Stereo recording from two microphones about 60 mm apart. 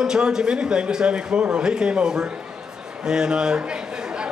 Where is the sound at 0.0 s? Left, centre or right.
Centre.